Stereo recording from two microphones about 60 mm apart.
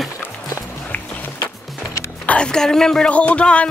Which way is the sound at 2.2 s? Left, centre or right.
Left.